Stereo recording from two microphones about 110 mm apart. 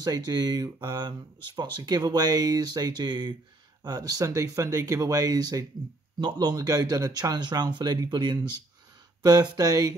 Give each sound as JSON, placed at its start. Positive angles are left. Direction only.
{"t": 0.0, "sound": "speech", "side_deg": -35}